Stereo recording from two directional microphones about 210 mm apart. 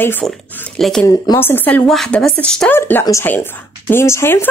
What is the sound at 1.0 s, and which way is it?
Speech, 15° left (ahead or behind).